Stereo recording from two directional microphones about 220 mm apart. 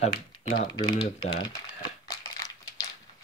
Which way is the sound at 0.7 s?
20° left (ahead or behind).